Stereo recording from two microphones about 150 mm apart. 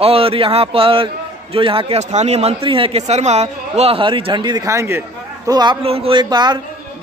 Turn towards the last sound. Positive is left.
turn(degrees=-30)  # may be behind; listen again after turning